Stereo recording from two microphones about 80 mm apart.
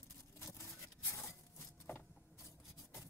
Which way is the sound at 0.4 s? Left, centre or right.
Left.